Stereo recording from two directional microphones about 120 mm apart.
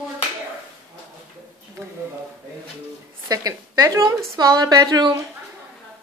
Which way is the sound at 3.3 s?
30° right (ahead or behind).